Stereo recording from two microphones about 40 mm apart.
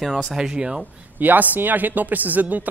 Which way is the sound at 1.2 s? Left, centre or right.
Right.